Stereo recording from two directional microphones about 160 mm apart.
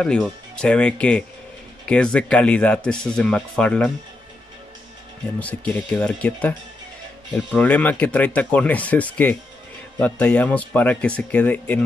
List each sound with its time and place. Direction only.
0.0 s speech: 5° left (ahead or behind)
5.4 s speech: 10° left (ahead or behind)
7.5 s speech: 10° left (ahead or behind)